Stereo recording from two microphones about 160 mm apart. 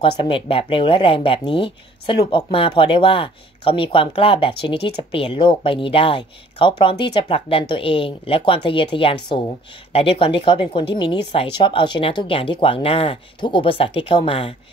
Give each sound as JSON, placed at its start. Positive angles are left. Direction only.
{"t": 0.2, "sound": "speech", "side_deg": 35}